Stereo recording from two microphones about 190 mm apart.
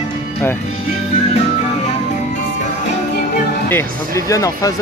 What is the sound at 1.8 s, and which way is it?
Music, 40° left (ahead or behind).